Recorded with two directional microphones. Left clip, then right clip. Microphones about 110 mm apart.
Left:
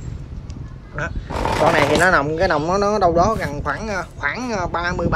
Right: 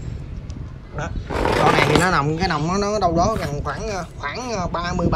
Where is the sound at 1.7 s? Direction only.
45° right (ahead or behind).